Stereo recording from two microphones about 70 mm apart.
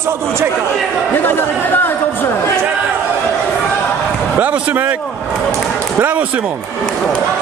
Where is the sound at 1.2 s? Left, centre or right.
Left.